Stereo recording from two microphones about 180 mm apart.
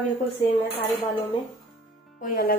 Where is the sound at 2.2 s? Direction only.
50° left (ahead or behind).